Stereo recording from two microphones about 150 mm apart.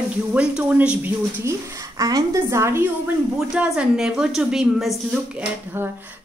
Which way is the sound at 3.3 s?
5° right (ahead or behind).